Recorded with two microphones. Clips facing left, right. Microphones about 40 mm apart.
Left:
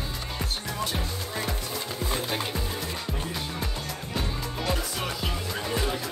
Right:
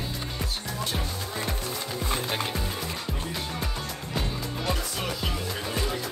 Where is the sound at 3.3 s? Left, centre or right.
Centre.